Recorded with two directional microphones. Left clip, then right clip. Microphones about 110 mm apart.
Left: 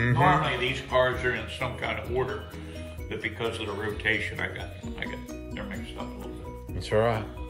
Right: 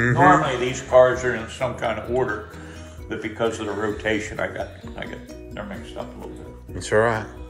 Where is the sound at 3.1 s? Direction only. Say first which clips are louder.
Right 7 dB; 45° right (ahead or behind).